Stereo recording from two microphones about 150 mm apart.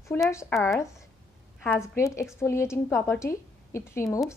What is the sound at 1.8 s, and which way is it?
A woman's voice, 20° left (ahead or behind).